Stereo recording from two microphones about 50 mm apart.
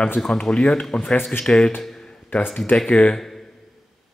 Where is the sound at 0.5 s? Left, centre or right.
Centre.